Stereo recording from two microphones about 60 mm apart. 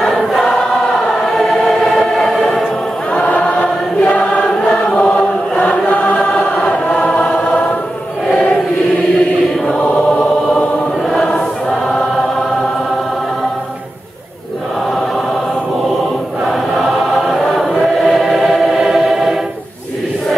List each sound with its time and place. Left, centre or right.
0.3 s choir: centre
3.1 s choir: centre
4.4 s choir: centre
5.6 s choir: left
9.7 s choir: left
16.4 s choir: centre